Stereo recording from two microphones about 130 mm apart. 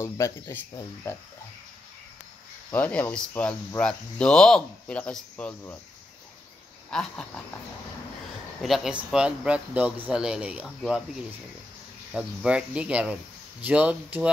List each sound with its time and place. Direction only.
0.0 s speech: 25° left (ahead or behind)
2.7 s speech: 15° left (ahead or behind)
6.9 s a sound: 5° left (ahead or behind)
8.6 s speech: centre (ahead or behind)
12.1 s speech: 10° right (ahead or behind)